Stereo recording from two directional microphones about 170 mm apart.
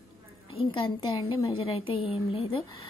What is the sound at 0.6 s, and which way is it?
A woman's voice, 30° left (ahead or behind).